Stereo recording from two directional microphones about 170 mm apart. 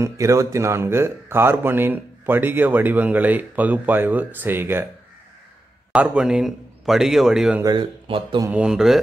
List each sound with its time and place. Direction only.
0.0 s speech: 20° right (ahead or behind)
5.9 s a man's voice: 5° right (ahead or behind)
7.6 s speech: 30° right (ahead or behind)
8.5 s a man's voice: 5° right (ahead or behind)